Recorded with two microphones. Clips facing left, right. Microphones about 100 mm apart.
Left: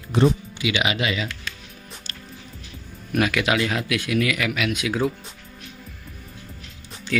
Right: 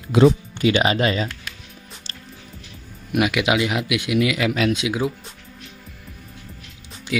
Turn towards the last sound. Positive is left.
turn(degrees=-10)  # may be behind; listen again after turning